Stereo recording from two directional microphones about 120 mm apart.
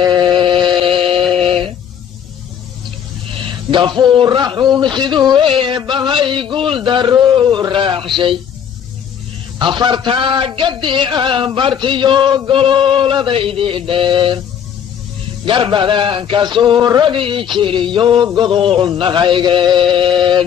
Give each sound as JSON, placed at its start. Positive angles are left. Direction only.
{"t": 0.0, "sound": "a sound", "side_deg": -40}
{"t": 3.7, "sound": "a man's voice", "side_deg": -40}
{"t": 9.6, "sound": "a man's voice", "side_deg": -40}
{"t": 15.4, "sound": "a man's voice", "side_deg": -45}